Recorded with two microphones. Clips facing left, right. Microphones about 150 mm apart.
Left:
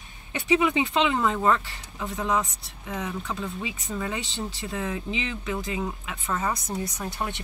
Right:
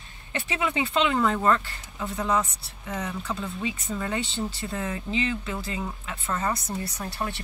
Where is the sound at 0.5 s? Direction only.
15° left (ahead or behind).